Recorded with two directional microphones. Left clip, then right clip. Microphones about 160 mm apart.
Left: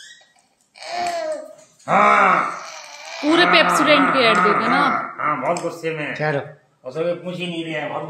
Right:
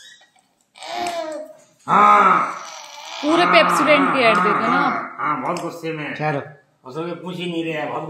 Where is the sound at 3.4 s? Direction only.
20° left (ahead or behind).